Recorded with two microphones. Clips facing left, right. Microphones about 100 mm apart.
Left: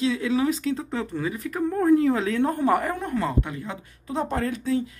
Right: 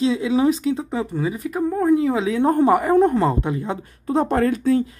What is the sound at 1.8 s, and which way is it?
Speech, 5° right (ahead or behind).